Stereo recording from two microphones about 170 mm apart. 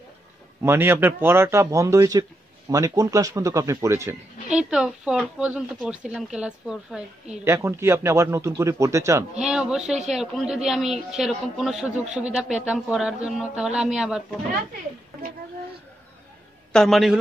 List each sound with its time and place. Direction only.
0.6 s a man's voice: 15° right (ahead or behind)
4.5 s speech: 5° right (ahead or behind)
7.5 s a man's voice: 15° right (ahead or behind)
9.4 s speech: 5° right (ahead or behind)
16.7 s speech: centre (ahead or behind)